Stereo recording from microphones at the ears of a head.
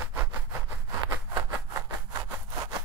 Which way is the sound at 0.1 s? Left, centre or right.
Right.